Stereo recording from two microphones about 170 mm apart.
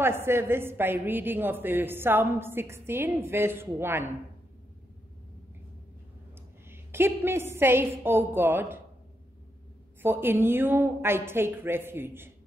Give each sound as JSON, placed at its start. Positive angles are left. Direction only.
{"t": 0.0, "sound": "a woman's voice", "side_deg": -15}
{"t": 6.7, "sound": "a woman's voice", "side_deg": -15}
{"t": 10.0, "sound": "a woman's voice", "side_deg": -10}